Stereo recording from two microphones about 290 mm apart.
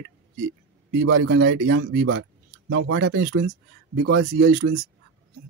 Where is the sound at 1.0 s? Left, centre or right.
Right.